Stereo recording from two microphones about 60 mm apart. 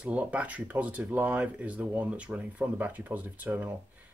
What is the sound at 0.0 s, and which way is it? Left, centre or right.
Speech, right.